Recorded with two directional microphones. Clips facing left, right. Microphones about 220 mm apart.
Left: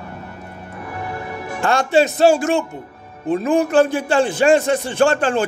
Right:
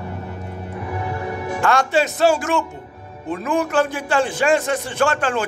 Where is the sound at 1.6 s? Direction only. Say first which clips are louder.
Left 3 dB; 25° left (ahead or behind).